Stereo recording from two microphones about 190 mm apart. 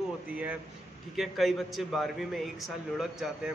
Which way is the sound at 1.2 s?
Centre (ahead or behind).